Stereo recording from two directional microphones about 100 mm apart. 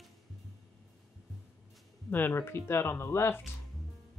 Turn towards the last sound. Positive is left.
turn(degrees=25)  # may be behind; listen again after turning